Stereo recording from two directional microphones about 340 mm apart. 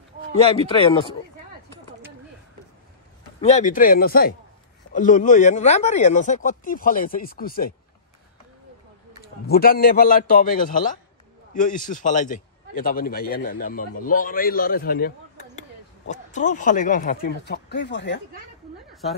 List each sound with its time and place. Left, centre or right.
0.4 s speech: centre
3.3 s a man's voice: centre
9.2 s a man's voice: left